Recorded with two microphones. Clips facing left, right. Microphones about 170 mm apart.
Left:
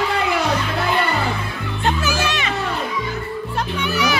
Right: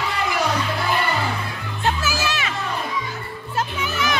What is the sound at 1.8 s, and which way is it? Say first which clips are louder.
Music: left 2 dB; 5° right (ahead or behind).